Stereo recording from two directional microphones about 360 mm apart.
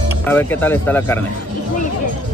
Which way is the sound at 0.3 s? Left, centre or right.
Centre.